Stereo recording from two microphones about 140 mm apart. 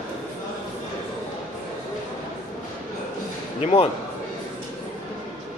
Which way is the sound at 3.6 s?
50° left (ahead or behind).